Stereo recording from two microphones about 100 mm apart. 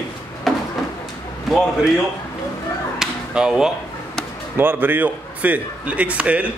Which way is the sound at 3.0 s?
5° right (ahead or behind).